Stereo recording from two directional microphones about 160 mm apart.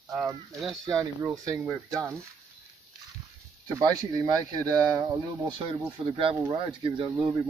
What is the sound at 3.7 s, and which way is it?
Speech, 25° right (ahead or behind).